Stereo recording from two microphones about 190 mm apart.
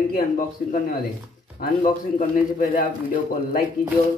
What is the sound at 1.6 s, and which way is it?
A man's voice, 45° left (ahead or behind).